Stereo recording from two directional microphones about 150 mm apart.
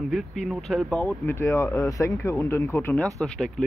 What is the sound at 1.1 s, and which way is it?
Speech, 15° left (ahead or behind).